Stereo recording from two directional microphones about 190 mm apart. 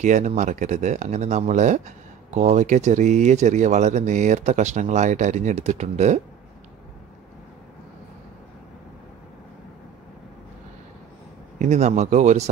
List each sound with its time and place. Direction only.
0.0 s speech: 40° right (ahead or behind)
11.5 s speech: 40° right (ahead or behind)